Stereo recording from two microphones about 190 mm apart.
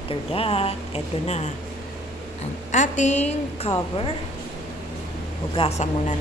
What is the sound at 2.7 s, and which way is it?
Speech, 40° left (ahead or behind).